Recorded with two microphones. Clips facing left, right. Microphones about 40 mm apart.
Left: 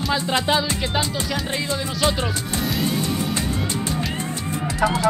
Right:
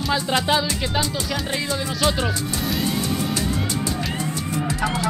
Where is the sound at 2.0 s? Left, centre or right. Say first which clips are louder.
Even; centre.